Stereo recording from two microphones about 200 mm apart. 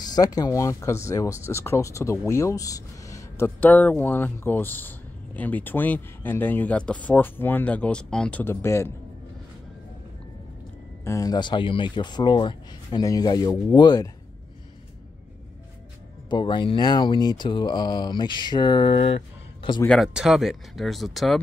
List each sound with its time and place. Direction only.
0.0 s speech: 20° left (ahead or behind)
11.1 s speech: 15° left (ahead or behind)
16.3 s speech: 25° left (ahead or behind)
19.8 s speech: centre (ahead or behind)